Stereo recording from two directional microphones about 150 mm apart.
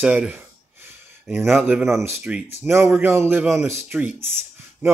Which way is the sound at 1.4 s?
Centre (ahead or behind).